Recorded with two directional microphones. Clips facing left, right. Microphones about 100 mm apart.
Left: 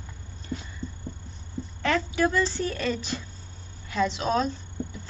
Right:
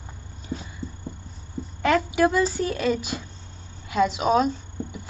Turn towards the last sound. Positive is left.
turn(degrees=-10)  # may be behind; listen again after turning